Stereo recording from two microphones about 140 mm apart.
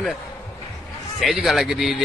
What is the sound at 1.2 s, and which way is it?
Speech, centre (ahead or behind).